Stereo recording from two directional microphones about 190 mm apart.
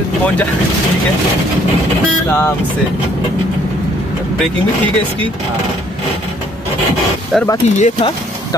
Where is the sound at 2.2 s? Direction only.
10° left (ahead or behind).